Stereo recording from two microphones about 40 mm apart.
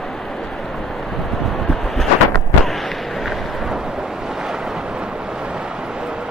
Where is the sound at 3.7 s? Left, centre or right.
Centre.